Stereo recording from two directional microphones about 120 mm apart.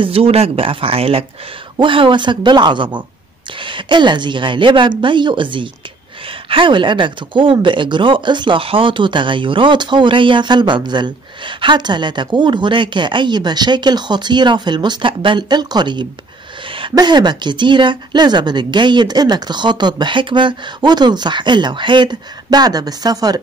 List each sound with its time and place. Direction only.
0.0 s speech: 55° right (ahead or behind); by 16.1 s 40° right (ahead or behind)
16.6 s a sound: 45° right (ahead or behind)
16.9 s speech: 35° right (ahead or behind)